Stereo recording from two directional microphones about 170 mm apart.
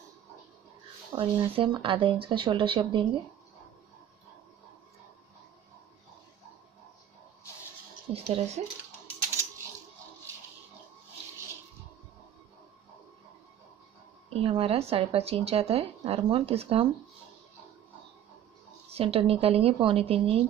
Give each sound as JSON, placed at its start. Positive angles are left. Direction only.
{"t": 1.1, "sound": "speech", "side_deg": -30}
{"t": 8.3, "sound": "speech", "side_deg": -40}
{"t": 14.3, "sound": "speech", "side_deg": -35}
{"t": 18.9, "sound": "speech", "side_deg": -35}